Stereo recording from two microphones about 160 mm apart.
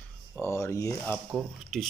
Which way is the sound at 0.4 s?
15° left (ahead or behind).